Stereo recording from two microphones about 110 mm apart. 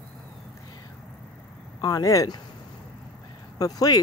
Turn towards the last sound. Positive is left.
turn(degrees=35)  # may be behind; listen again after turning